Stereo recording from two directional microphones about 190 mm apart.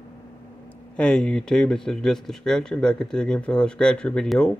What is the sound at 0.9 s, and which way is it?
Speech, 5° left (ahead or behind).